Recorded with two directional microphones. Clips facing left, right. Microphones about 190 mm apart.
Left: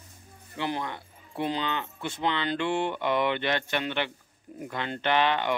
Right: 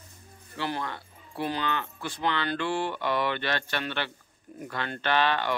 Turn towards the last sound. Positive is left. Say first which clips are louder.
# left 1 dB
turn(degrees=20)  # may be behind; listen again after turning